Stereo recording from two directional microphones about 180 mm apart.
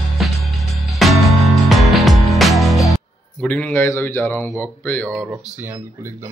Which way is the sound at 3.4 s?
10° left (ahead or behind).